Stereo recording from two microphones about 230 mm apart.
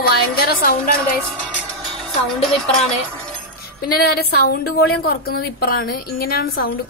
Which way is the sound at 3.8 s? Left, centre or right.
Left.